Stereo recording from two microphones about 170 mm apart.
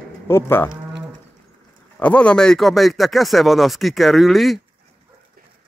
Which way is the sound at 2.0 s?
5° left (ahead or behind).